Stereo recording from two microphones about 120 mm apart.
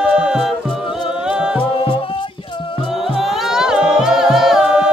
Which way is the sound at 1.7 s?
50° left (ahead or behind).